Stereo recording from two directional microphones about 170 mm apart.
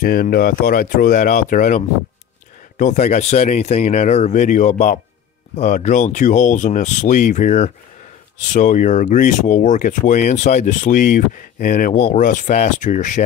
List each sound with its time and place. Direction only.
0.0 s speech: 60° left (ahead or behind)